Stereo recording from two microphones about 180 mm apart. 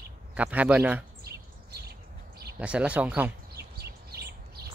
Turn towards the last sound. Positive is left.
turn(degrees=-10)  # may be behind; listen again after turning